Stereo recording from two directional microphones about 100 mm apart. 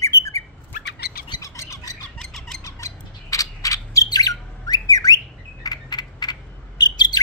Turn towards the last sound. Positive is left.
turn(degrees=45)  # may be behind; listen again after turning